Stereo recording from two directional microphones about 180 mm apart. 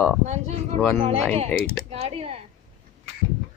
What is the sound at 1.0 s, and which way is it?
Speech, 35° right (ahead or behind).